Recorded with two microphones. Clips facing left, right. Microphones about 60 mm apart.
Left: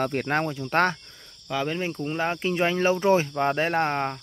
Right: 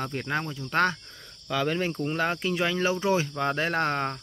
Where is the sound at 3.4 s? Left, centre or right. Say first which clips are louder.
Left 3 dB; left.